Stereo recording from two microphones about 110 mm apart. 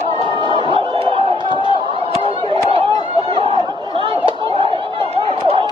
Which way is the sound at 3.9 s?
50° right (ahead or behind).